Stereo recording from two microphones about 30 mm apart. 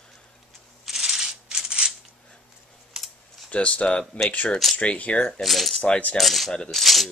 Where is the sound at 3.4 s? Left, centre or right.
Left.